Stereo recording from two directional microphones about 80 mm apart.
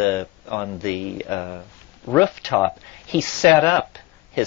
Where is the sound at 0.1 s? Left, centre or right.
Left.